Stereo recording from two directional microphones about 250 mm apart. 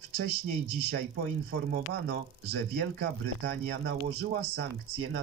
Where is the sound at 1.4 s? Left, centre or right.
Right.